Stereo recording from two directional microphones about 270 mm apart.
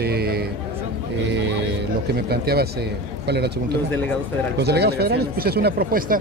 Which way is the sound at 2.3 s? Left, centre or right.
Right.